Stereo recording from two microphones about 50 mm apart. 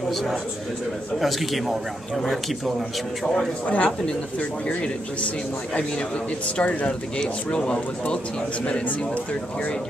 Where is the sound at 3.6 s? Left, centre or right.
Left.